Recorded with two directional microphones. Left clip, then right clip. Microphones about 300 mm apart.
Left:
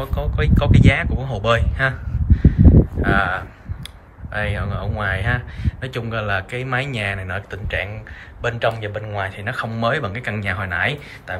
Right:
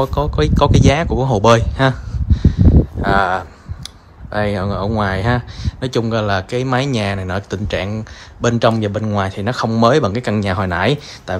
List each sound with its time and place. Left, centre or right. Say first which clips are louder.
0.0 s speech: right 8 dB; centre